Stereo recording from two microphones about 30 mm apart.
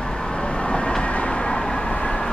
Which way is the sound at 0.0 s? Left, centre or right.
Left.